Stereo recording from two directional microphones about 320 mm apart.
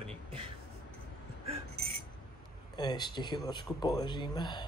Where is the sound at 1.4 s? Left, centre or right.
Centre.